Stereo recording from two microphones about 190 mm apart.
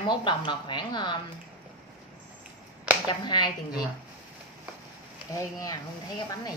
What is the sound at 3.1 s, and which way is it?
Speech, 25° left (ahead or behind).